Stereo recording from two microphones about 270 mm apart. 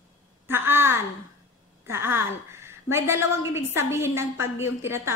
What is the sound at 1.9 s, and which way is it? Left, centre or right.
A woman's voice, centre.